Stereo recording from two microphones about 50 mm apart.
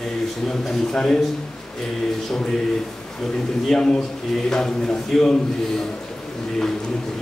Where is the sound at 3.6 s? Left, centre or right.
Centre.